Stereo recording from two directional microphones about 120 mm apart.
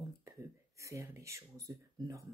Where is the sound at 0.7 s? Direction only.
25° right (ahead or behind).